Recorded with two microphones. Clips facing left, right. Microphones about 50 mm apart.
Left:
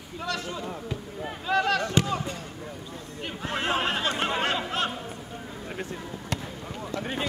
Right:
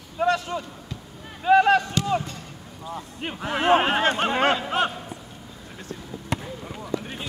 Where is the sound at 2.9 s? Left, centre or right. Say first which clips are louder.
Right 8 dB; right.